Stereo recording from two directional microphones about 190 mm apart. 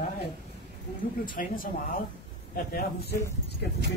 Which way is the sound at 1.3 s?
50° left (ahead or behind).